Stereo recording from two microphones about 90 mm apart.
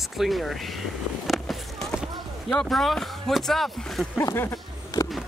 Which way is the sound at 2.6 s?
5° left (ahead or behind).